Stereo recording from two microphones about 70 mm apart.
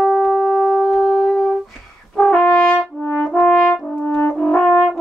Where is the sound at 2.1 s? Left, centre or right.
Centre.